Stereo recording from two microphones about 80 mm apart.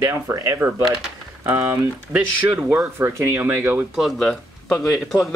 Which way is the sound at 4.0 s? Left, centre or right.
Centre.